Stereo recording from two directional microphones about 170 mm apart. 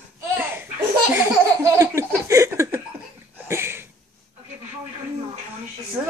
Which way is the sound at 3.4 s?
15° right (ahead or behind).